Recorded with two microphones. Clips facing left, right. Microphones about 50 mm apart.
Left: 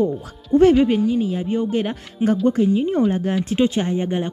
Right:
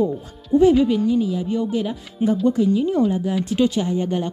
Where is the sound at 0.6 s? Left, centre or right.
Left.